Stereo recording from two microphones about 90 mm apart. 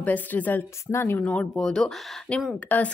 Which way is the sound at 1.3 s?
10° left (ahead or behind).